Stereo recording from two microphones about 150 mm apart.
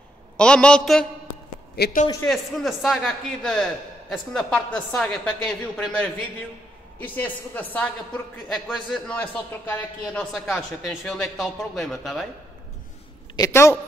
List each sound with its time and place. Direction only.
0.4 s a woman's voice: 5° left (ahead or behind)
1.8 s a man's voice: 90° left
2.2 s a man's voice: centre (ahead or behind)
8.5 s a woman's voice: centre (ahead or behind)
13.4 s a woman's voice: 15° left (ahead or behind)